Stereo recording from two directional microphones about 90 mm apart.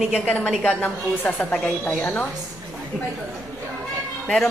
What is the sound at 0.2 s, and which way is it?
A woman's voice, 20° left (ahead or behind).